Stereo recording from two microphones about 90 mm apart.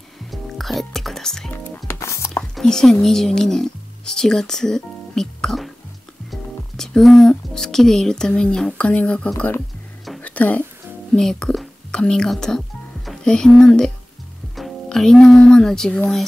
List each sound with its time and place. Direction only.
0.3 s music: centre (ahead or behind)
1.5 s music: 25° left (ahead or behind)
2.5 s speech: 5° left (ahead or behind)
10.2 s a sound: 15° left (ahead or behind)
11.1 s speech: 5° left (ahead or behind)